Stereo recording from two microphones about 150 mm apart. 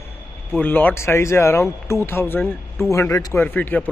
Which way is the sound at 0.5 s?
10° left (ahead or behind).